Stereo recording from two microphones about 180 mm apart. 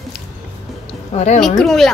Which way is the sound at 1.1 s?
40° left (ahead or behind).